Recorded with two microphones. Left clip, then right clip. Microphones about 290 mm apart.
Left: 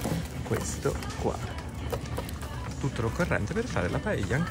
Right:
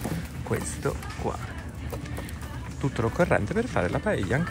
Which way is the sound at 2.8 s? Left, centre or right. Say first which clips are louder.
Right 6 dB; centre.